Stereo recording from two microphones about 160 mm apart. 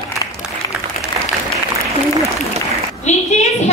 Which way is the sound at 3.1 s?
45° left (ahead or behind).